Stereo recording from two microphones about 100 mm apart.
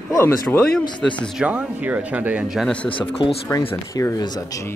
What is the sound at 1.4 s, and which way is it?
Speech, 15° right (ahead or behind).